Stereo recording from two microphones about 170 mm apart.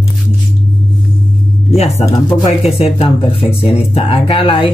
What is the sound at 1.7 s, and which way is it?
Speech, 40° left (ahead or behind).